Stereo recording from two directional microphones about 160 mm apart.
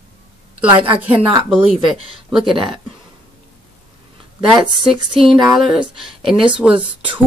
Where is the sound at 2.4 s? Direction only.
30° right (ahead or behind).